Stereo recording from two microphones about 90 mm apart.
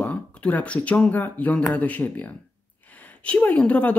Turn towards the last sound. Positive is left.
turn(degrees=15)  # may be behind; listen again after turning